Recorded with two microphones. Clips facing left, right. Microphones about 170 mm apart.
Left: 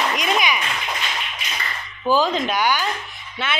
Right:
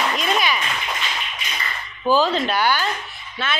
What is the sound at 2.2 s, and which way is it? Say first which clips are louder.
Speech: even; 15° left (ahead or behind).